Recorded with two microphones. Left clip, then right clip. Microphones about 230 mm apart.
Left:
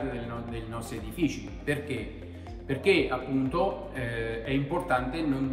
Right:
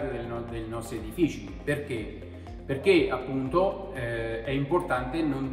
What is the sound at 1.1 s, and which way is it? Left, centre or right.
A man's voice, centre.